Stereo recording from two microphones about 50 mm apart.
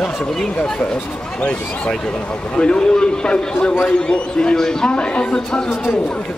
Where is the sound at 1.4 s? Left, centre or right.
Left.